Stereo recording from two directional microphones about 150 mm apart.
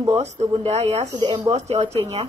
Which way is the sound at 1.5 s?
45° right (ahead or behind).